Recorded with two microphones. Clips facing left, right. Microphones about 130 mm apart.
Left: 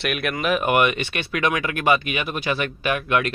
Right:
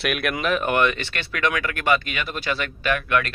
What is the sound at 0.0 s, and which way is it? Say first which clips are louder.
Speech: even; centre (ahead or behind).